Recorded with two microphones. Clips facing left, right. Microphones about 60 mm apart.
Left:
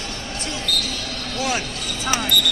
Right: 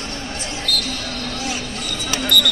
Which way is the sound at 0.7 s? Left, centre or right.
Right.